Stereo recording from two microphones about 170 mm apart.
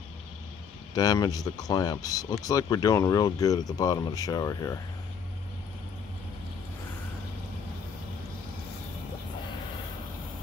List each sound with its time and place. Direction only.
0.9 s speech: 20° left (ahead or behind)